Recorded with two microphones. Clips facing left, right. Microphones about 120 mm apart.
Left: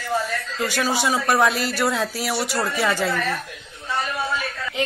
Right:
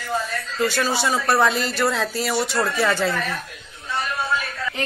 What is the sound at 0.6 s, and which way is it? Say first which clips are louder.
Speech: right 1 dB; 10° left (ahead or behind).